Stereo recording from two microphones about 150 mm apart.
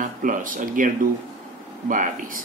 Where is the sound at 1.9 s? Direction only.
65° right (ahead or behind).